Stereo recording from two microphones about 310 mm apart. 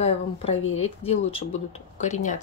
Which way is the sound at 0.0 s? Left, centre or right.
Centre.